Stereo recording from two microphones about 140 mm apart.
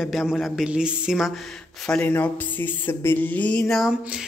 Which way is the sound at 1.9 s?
10° left (ahead or behind).